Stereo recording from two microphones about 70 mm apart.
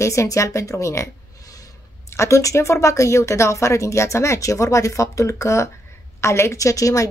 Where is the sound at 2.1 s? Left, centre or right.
Left.